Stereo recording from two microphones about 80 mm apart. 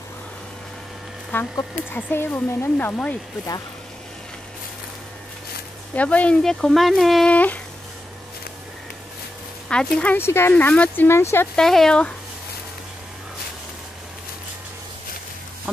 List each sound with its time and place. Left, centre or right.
1.3 s speech: left
5.9 s speech: centre
6.4 s speech: centre
7.2 s speech: centre
9.7 s speech: centre
10.1 s speech: left
10.5 s speech: centre
11.1 s speech: left
11.5 s speech: centre